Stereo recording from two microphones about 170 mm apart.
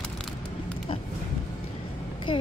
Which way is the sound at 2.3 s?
30° left (ahead or behind).